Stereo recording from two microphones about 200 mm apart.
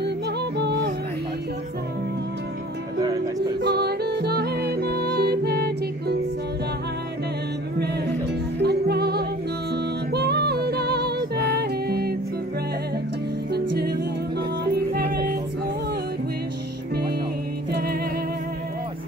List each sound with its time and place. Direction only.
0.0 s music: 55° right (ahead or behind)
3.0 s music: 20° right (ahead or behind)
3.6 s music: 55° right (ahead or behind)
8.5 s music: 55° right (ahead or behind)
13.5 s music: 55° right (ahead or behind)
17.6 s music: 50° right (ahead or behind)